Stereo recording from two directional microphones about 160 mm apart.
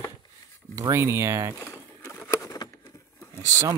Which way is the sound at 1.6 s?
15° left (ahead or behind).